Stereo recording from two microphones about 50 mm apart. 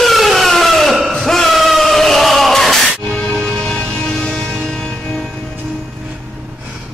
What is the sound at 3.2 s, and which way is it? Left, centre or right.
Music, left.